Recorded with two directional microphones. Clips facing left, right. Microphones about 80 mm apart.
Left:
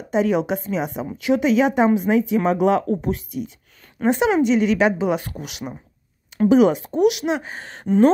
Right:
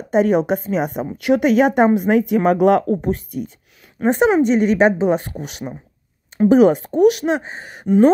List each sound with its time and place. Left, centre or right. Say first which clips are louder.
0.1 s a woman's voice: right 4 dB; right
2.9 s a woman's voice: right 3 dB; right
7.4 s speech: right 3 dB; centre